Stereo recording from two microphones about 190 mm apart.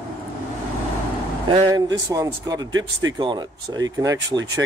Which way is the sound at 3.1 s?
20° right (ahead or behind).